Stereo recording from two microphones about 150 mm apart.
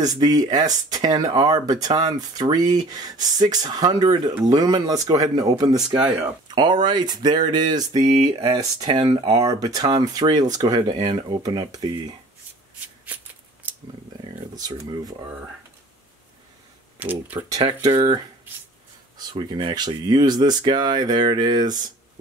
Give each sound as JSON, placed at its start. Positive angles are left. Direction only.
{"t": 0.0, "sound": "speech", "side_deg": -25}
{"t": 12.8, "sound": "shuffling cards", "side_deg": -10}
{"t": 13.6, "sound": "a sound", "side_deg": -10}
{"t": 14.5, "sound": "speech", "side_deg": -25}
{"t": 17.0, "sound": "speech", "side_deg": -10}
{"t": 17.8, "sound": "speech", "side_deg": -30}